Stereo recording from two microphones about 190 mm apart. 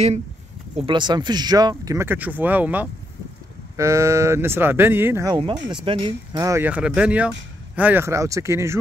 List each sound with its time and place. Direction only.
0.7 s speech: 25° right (ahead or behind)